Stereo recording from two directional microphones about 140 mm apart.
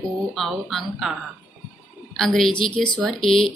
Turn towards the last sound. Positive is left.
turn(degrees=0)  # may be behind; listen again after turning